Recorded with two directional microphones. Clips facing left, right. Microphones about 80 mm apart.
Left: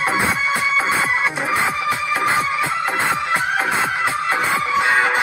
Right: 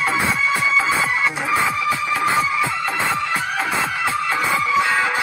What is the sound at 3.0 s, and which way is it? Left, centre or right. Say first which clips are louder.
Music: left 1 dB; left.